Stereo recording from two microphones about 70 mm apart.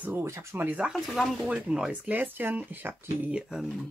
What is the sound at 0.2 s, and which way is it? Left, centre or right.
Speech, right.